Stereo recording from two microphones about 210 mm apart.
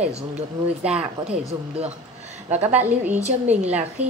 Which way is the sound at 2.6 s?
10° right (ahead or behind).